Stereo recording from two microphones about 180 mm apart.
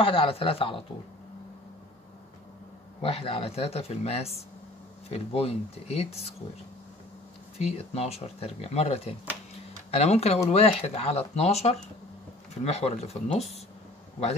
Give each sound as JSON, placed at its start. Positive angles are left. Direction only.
{"t": 0.0, "sound": "speech", "side_deg": 30}
{"t": 3.0, "sound": "speech", "side_deg": 30}
{"t": 7.5, "sound": "speech", "side_deg": 35}